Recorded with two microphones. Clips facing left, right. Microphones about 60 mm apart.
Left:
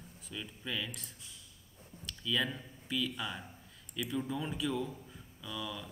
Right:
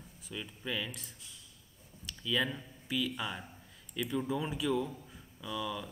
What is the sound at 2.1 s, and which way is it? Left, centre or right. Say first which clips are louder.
Speech: right 1 dB; centre.